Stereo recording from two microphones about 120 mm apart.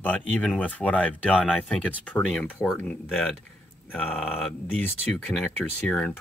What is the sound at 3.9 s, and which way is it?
Speech, 10° left (ahead or behind).